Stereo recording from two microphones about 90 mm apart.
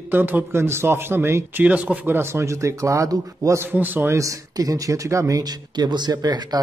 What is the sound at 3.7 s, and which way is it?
Speech, 20° right (ahead or behind).